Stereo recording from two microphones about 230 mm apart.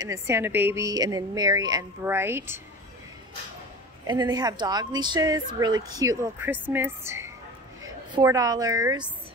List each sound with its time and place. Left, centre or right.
0.0 s speech: centre
4.1 s speech: centre